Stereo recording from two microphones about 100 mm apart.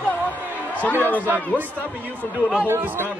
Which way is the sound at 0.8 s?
15° left (ahead or behind).